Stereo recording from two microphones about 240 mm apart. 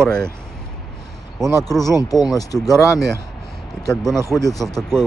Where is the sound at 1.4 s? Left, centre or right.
Centre.